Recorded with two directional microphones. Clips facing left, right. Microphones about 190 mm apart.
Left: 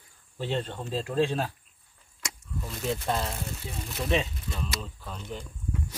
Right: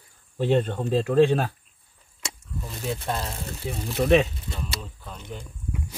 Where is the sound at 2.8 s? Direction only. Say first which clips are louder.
Even; centre (ahead or behind).